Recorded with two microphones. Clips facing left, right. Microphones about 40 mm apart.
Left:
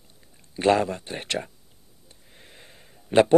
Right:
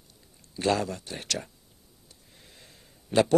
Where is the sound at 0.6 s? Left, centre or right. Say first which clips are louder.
Left 6 dB; left.